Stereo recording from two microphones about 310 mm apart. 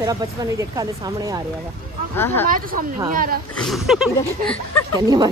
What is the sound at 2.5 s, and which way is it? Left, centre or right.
Speech, right.